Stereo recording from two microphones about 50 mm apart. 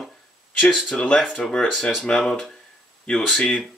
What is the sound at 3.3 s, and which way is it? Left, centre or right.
Speech, centre.